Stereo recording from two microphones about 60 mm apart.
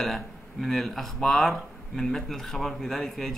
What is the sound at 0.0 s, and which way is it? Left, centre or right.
A man's voice, centre.